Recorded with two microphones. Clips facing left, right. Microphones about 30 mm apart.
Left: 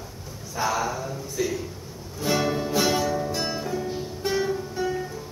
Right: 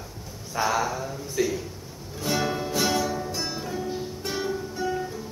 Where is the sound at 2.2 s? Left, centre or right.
Centre.